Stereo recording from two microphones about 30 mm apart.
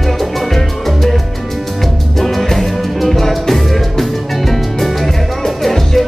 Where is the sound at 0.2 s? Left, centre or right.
Centre.